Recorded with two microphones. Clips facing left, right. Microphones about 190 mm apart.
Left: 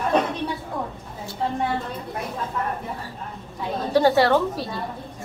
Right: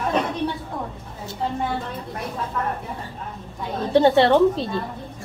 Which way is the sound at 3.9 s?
25° right (ahead or behind).